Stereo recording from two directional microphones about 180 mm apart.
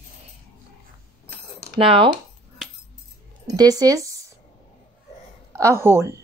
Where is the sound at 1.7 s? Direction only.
30° right (ahead or behind).